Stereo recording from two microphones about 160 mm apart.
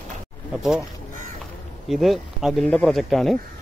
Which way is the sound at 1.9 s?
Centre (ahead or behind).